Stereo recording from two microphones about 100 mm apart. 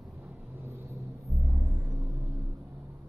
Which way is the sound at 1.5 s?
30° right (ahead or behind).